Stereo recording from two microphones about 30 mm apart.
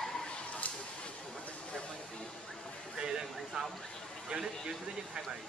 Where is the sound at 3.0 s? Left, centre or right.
Right.